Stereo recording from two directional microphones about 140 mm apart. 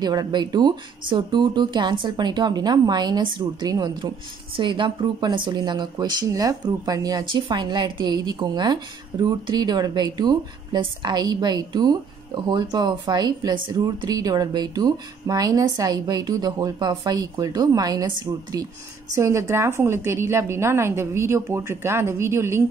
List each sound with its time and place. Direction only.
0.0 s speech: 30° right (ahead or behind)